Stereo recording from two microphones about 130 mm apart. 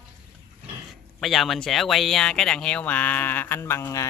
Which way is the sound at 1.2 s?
Centre (ahead or behind).